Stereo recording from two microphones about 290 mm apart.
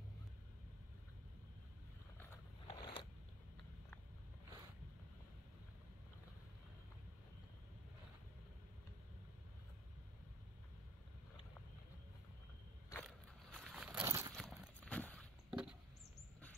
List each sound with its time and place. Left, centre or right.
2.7 s biting: centre
12.9 s a sound: centre
14.3 s clip-clop: centre